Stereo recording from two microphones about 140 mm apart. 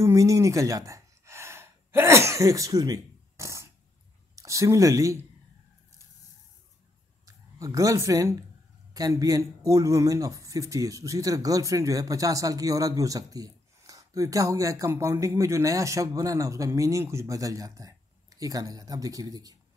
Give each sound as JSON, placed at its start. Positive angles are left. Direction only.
{"t": 0.0, "sound": "a man's voice", "side_deg": -25}
{"t": 7.2, "sound": "a man's voice", "side_deg": -25}